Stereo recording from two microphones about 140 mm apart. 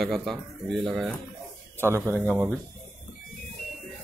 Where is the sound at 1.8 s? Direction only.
15° right (ahead or behind).